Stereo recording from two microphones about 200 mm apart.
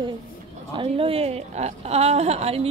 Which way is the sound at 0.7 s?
25° right (ahead or behind).